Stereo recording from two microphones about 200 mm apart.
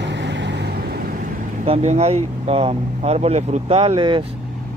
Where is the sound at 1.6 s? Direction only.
35° right (ahead or behind).